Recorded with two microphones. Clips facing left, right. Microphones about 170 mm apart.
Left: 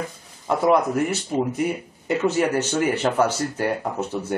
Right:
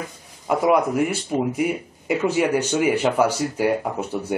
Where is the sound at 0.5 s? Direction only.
10° right (ahead or behind).